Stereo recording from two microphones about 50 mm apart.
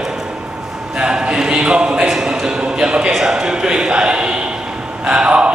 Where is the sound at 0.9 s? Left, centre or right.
Centre.